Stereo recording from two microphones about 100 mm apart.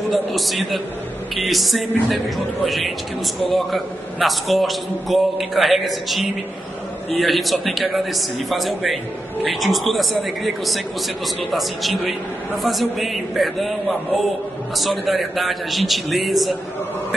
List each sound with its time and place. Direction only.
0.1 s a man's voice: centre (ahead or behind)